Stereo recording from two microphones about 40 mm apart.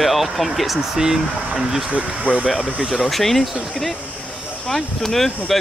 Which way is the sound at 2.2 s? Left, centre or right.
Left.